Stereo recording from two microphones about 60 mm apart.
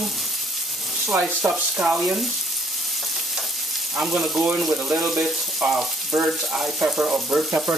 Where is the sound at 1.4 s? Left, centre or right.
Right.